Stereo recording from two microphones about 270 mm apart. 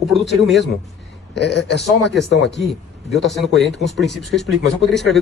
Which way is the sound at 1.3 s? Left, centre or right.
Left.